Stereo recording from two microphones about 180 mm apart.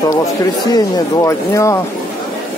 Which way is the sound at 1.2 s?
15° left (ahead or behind).